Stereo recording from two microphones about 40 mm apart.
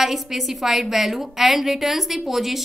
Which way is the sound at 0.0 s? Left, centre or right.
Centre.